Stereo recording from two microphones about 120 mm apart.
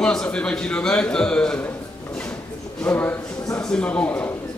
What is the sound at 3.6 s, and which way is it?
Speech, 5° left (ahead or behind).